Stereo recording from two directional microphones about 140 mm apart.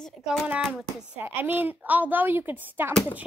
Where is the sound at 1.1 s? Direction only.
15° right (ahead or behind).